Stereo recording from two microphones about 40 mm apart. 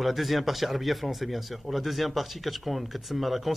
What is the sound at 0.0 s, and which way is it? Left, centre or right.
Speech, centre.